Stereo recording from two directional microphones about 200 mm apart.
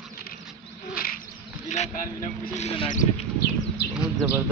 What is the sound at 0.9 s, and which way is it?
Insect, 45° left (ahead or behind).